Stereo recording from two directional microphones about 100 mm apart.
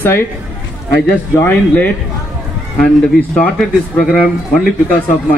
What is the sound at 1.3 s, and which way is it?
Speech, 20° left (ahead or behind).